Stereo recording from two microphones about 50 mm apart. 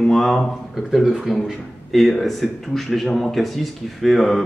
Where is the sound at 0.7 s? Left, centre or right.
Centre.